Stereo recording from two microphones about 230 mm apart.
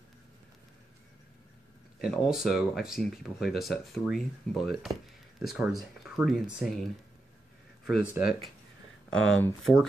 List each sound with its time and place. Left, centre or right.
2.0 s speech: centre